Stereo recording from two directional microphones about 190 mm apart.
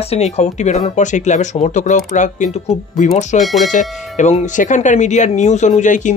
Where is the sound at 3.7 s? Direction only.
40° left (ahead or behind).